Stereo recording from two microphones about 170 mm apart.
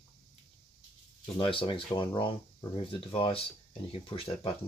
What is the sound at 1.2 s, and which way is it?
Speech, 30° left (ahead or behind).